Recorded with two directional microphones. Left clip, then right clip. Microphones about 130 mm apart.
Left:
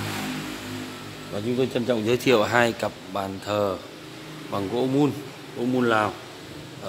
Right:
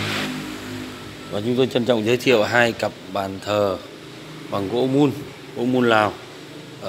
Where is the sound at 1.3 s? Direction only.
5° right (ahead or behind).